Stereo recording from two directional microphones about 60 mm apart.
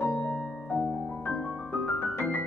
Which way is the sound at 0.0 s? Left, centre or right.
Left.